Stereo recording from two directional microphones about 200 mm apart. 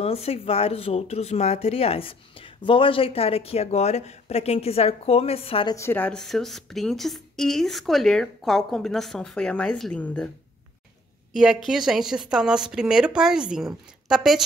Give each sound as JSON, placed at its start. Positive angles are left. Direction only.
{"t": 0.0, "sound": "speech", "side_deg": 30}
{"t": 5.8, "sound": "a woman's voice", "side_deg": 10}
{"t": 11.3, "sound": "a woman's voice", "side_deg": 0}